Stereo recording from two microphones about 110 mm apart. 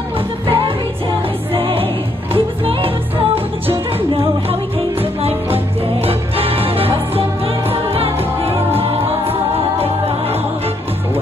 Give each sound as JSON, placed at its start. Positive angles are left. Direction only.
{"t": 0.5, "sound": "music", "side_deg": -55}
{"t": 4.1, "sound": "music", "side_deg": -60}
{"t": 9.8, "sound": "music", "side_deg": -65}